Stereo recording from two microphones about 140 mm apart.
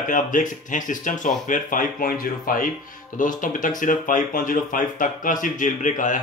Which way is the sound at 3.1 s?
70° left (ahead or behind).